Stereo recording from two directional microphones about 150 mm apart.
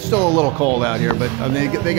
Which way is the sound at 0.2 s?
15° right (ahead or behind).